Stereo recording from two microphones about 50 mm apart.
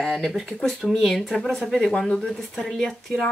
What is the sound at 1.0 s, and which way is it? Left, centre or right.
Speech, centre.